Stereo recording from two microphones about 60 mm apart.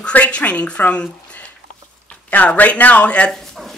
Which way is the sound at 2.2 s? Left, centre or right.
Left.